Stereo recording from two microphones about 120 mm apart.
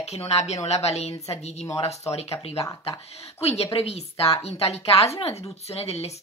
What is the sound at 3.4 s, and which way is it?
Speech, 60° left (ahead or behind).